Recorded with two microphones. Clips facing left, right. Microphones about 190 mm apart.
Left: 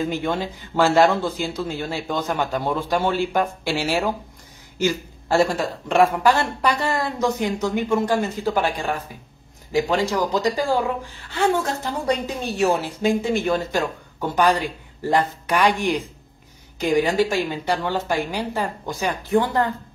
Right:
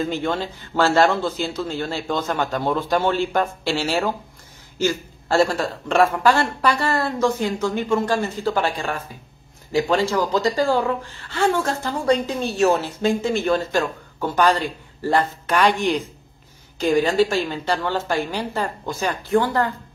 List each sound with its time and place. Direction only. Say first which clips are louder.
0.0 s speech: even; 15° left (ahead or behind)